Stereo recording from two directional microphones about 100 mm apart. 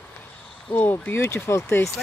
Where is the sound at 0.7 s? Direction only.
20° left (ahead or behind).